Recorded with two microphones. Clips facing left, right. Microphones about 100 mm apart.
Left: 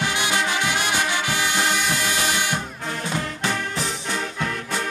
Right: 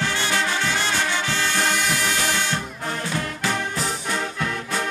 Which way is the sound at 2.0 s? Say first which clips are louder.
Even; 15° left (ahead or behind).